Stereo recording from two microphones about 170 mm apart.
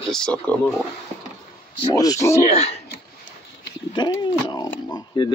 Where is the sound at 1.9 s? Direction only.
20° left (ahead or behind).